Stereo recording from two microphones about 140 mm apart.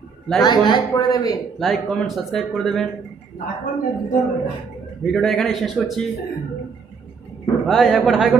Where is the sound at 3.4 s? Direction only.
90° left.